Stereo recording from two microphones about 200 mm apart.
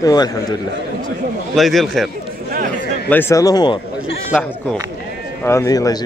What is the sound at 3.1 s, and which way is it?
Speech, 10° left (ahead or behind).